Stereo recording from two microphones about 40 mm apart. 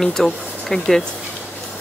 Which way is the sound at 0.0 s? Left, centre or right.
Centre.